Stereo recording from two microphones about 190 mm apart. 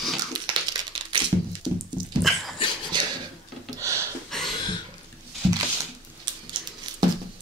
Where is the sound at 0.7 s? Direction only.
25° right (ahead or behind).